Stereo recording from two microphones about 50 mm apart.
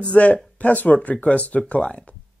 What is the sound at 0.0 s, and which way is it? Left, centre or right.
Speech, left.